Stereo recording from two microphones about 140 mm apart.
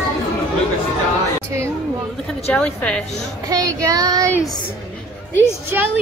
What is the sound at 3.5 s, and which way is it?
Child singing, 25° right (ahead or behind).